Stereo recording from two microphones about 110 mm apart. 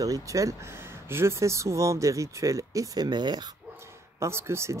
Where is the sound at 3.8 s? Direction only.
25° right (ahead or behind).